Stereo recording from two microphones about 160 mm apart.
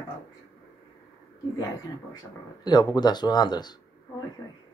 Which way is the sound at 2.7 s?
25° left (ahead or behind).